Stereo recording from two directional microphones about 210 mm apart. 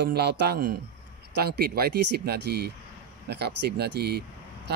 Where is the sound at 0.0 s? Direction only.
50° right (ahead or behind).